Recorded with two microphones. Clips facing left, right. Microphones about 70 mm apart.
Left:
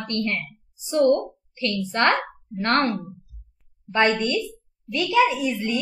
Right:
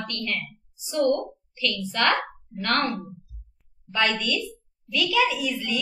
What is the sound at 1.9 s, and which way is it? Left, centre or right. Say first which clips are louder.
A woman's voice: left 3 dB; left.